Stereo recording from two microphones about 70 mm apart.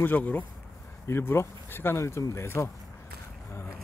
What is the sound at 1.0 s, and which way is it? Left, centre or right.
Speech, left.